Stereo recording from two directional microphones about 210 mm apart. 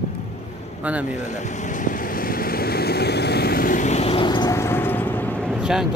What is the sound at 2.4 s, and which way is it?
Vehicle, 45° left (ahead or behind).